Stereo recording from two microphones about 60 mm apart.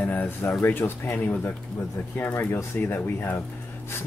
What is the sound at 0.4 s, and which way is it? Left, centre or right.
Speech, left.